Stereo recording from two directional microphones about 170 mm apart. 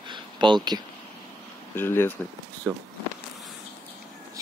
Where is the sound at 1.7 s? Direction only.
10° left (ahead or behind).